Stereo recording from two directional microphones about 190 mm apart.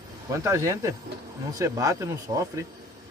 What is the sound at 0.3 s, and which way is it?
Speech, 15° right (ahead or behind).